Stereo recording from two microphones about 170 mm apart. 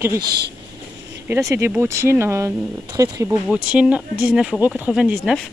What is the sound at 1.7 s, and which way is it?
Speech, 15° right (ahead or behind).